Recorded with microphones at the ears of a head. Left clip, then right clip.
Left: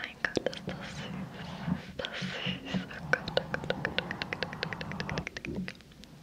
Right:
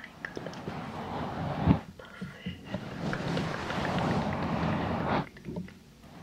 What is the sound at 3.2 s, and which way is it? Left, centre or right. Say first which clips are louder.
Vehicle: left 1 dB; right.